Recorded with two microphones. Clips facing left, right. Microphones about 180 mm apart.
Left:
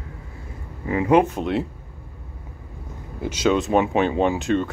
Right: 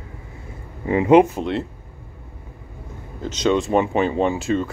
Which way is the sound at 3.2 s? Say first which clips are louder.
Right 1 dB; 5° left (ahead or behind).